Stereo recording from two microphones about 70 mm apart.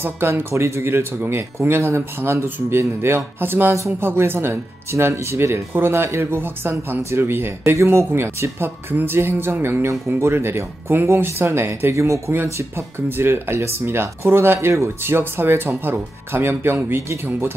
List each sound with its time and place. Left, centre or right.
0.0 s speech: right
3.7 s speech: right
4.1 s speech: right